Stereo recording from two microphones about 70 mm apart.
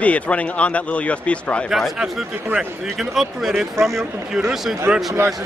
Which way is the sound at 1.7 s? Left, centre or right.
Centre.